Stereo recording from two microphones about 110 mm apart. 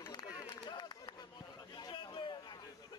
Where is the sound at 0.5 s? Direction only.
40° left (ahead or behind).